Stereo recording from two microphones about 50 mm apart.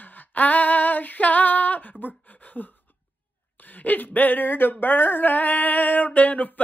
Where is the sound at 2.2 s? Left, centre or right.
Left.